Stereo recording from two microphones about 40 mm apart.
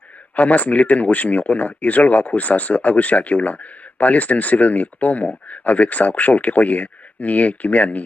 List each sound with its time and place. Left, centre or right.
0.4 s speech: left